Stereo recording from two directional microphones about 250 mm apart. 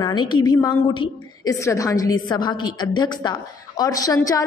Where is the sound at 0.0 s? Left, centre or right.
Centre.